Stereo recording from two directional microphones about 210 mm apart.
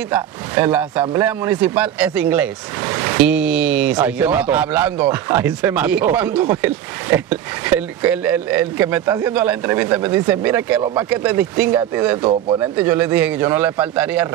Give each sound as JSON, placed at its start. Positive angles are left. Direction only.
{"t": 0.1, "sound": "speech", "side_deg": -10}
{"t": 12.2, "sound": "speech", "side_deg": -25}
{"t": 12.5, "sound": "speech", "side_deg": -10}